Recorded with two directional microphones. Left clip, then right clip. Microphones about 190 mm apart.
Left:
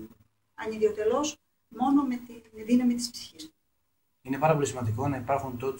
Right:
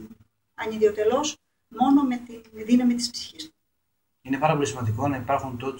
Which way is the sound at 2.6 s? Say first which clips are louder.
Right 4 dB; 5° right (ahead or behind).